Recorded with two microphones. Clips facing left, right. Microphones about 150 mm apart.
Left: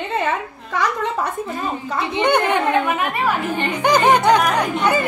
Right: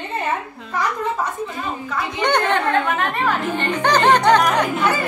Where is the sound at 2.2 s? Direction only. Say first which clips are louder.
Left 2 dB; 10° left (ahead or behind).